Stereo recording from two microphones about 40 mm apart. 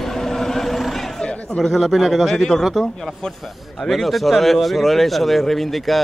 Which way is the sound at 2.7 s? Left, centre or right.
Centre.